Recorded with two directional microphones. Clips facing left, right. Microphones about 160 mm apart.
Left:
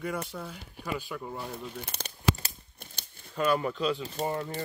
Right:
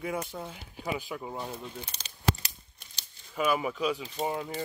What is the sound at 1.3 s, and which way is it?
Speech, 5° right (ahead or behind).